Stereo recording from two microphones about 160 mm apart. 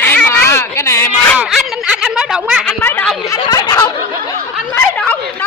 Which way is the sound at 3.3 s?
25° left (ahead or behind).